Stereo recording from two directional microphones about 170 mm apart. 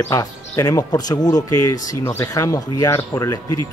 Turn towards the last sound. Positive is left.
turn(degrees=20)  # may be behind; listen again after turning